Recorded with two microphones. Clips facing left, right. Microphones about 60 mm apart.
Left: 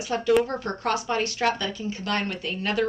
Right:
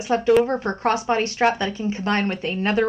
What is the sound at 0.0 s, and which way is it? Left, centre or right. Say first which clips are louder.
A woman's voice: right 4 dB; right.